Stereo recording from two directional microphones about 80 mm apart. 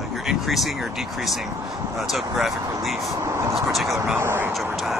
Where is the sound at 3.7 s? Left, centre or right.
Centre.